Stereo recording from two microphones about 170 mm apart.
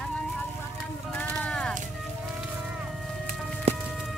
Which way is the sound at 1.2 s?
5° left (ahead or behind).